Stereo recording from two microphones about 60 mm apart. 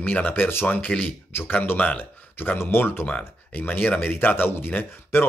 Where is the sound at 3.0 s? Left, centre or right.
Left.